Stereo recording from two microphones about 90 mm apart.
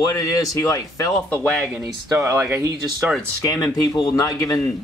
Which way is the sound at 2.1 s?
30° right (ahead or behind).